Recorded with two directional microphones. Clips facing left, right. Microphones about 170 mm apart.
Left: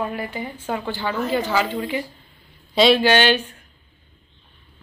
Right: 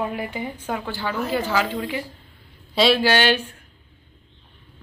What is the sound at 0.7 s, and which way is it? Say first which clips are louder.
Speech: left 3 dB; centre (ahead or behind).